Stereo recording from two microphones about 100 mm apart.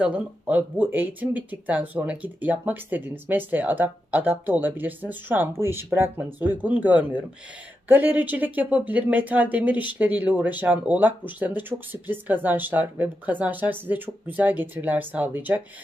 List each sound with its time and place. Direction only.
0.0 s speech: 15° right (ahead or behind)